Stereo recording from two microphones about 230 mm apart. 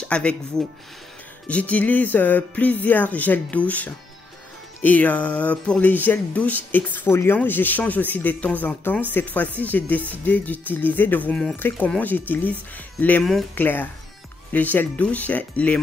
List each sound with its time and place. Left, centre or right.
0.1 s speech: centre